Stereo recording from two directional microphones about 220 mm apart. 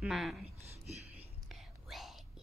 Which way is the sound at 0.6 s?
30° right (ahead or behind).